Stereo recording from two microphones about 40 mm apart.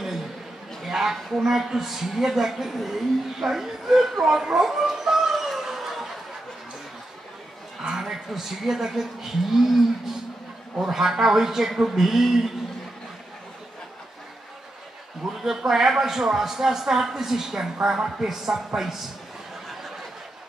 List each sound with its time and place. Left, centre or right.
0.8 s a sound: centre
1.4 s a woman's voice: centre
4.6 s dog: centre
7.8 s a woman's voice: centre
15.4 s a woman's voice: centre